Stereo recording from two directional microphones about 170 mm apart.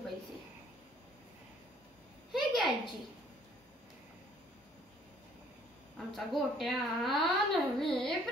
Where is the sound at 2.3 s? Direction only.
Centre (ahead or behind).